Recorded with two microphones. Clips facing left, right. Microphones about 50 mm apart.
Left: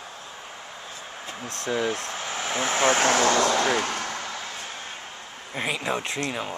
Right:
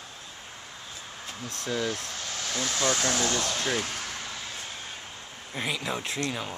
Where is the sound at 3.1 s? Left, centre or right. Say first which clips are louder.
Left 7 dB; left.